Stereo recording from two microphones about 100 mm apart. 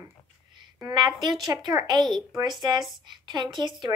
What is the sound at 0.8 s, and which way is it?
A woman's voice, 45° right (ahead or behind).